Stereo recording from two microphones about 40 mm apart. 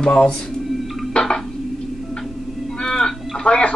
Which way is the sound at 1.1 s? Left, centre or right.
Left.